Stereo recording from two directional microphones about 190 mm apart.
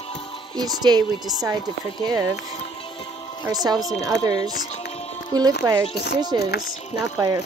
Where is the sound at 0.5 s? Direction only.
20° right (ahead or behind).